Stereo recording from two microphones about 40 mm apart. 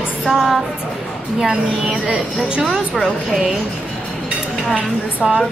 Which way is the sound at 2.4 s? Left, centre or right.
Right.